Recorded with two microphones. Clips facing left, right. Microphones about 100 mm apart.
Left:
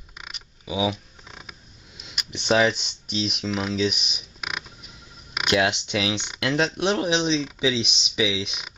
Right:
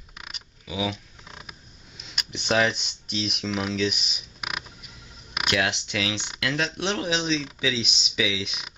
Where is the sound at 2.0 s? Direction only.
10° left (ahead or behind).